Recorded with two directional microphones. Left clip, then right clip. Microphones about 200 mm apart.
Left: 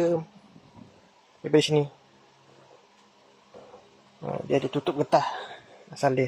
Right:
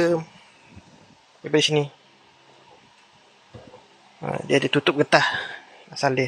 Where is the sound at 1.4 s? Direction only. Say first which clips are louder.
Right 2 dB; 10° left (ahead or behind).